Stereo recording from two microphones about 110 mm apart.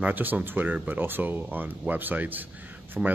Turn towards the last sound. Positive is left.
turn(degrees=-5)  # may be behind; listen again after turning